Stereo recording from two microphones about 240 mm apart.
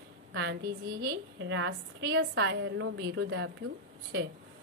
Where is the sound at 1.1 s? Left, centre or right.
Right.